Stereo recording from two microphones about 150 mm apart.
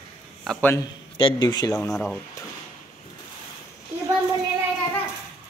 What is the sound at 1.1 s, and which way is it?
Speech, 35° left (ahead or behind).